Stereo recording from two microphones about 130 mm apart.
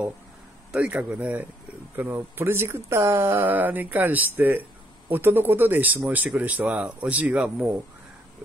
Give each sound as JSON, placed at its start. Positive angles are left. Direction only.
{"t": 0.7, "sound": "speech", "side_deg": -10}